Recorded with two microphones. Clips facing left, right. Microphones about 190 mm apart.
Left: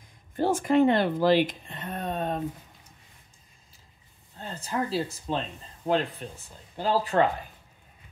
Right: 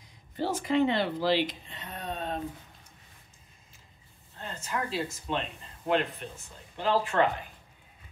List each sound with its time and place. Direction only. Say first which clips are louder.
0.4 s speech: left 5 dB; 50° left (ahead or behind)
4.4 s speech: left 4 dB; 35° left (ahead or behind)